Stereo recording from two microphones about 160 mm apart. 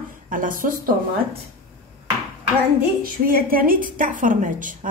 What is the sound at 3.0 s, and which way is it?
A woman's voice, 65° right (ahead or behind).